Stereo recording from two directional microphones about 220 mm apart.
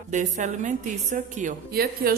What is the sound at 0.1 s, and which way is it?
A woman's voice, 35° right (ahead or behind).